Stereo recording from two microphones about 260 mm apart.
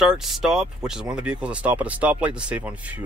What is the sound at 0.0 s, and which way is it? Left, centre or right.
Speech, centre.